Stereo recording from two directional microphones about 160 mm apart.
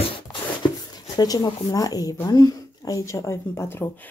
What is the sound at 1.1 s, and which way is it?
Speech, 25° left (ahead or behind).